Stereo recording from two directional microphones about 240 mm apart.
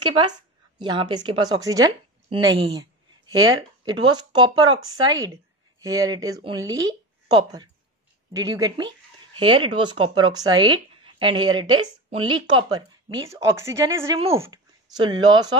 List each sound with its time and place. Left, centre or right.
0.0 s a woman's voice: centre